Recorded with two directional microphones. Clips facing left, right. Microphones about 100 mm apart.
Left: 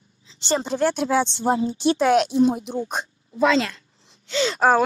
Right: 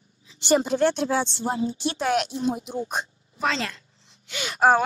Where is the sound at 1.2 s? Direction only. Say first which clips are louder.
Left 5 dB; 30° left (ahead or behind).